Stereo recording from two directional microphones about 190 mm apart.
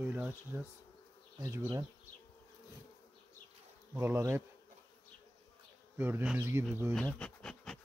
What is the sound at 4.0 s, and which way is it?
Bee, 15° right (ahead or behind).